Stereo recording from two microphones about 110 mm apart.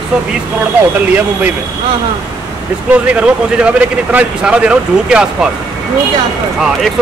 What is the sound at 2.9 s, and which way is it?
Speech, 10° right (ahead or behind).